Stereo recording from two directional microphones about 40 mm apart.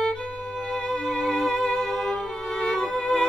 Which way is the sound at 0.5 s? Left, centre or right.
Centre.